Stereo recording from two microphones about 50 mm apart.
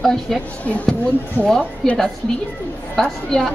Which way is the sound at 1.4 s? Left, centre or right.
Right.